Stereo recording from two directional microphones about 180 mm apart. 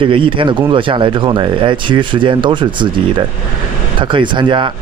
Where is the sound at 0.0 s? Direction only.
30° right (ahead or behind).